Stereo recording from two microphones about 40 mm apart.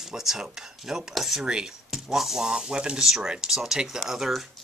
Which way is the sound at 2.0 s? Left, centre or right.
Centre.